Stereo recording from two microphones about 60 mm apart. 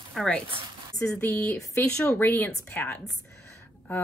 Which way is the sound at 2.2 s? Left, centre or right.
Left.